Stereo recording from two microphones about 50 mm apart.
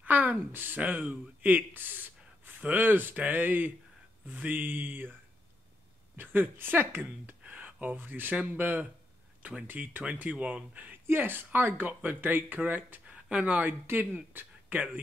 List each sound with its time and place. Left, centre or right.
0.0 s speech: right
6.1 s speech: right
9.7 s speech: right
11.1 s speech: right
13.0 s a sound: right
13.8 s speech: right